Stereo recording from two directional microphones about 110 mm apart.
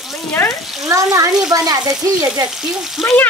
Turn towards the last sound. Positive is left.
turn(degrees=15)  # may be behind; listen again after turning